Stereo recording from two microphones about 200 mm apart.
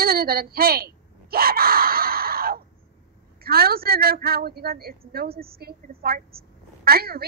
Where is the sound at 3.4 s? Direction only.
50° right (ahead or behind).